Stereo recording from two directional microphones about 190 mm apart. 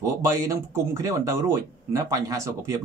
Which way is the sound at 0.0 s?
15° right (ahead or behind).